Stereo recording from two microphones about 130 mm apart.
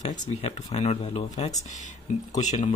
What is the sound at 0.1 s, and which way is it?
Speech, 60° left (ahead or behind).